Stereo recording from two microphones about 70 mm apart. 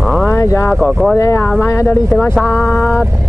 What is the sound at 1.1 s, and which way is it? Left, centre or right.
Speech, left.